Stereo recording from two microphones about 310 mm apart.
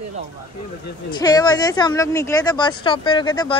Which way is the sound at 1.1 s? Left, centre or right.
Centre.